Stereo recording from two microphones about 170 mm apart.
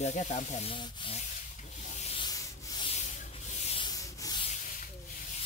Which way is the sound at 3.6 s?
35° left (ahead or behind).